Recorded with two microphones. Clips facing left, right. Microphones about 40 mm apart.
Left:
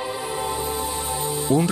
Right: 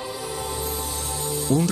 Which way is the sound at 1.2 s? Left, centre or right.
Left.